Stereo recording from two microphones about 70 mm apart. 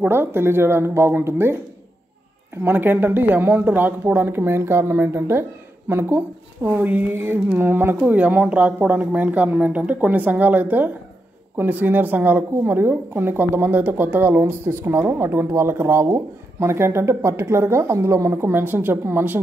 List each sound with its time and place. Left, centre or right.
0.1 s speech: right
2.6 s speech: right